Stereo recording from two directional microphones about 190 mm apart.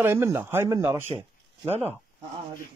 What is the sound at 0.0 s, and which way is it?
Speech, 15° right (ahead or behind).